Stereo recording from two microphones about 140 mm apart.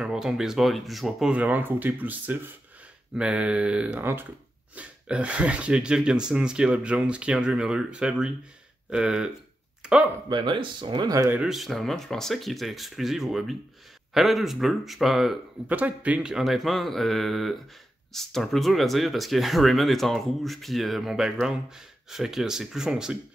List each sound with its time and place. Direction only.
0.0 s speech: 5° right (ahead or behind)
10.3 s speech: 35° right (ahead or behind)
11.2 s speech: 5° right (ahead or behind)